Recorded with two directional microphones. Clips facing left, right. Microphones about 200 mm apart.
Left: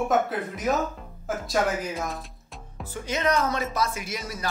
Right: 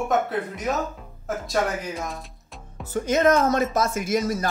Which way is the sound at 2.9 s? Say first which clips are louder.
Right 6 dB; 45° right (ahead or behind).